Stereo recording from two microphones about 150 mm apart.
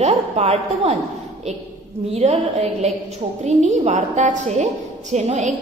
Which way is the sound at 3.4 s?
50° right (ahead or behind).